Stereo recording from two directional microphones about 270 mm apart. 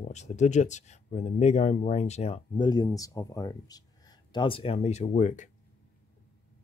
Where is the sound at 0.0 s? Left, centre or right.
Left.